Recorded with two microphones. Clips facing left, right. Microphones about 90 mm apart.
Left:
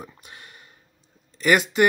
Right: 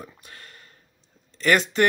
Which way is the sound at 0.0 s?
15° left (ahead or behind).